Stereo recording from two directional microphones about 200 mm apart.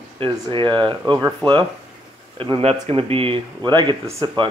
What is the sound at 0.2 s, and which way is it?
Speech, 25° right (ahead or behind).